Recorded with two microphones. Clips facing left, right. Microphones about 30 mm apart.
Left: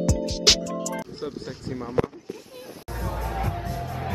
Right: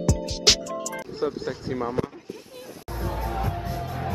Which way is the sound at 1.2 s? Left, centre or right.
Right.